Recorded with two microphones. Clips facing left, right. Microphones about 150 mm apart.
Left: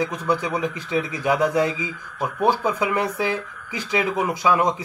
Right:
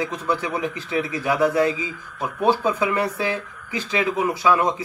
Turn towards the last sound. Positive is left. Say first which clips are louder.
# even
turn(degrees=15)  # may be behind; listen again after turning